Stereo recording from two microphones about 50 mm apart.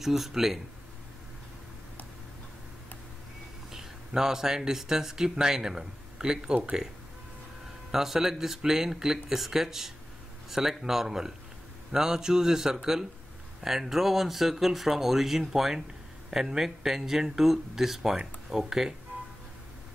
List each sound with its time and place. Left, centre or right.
0.0 s speech: centre
3.7 s speech: centre
7.9 s speech: centre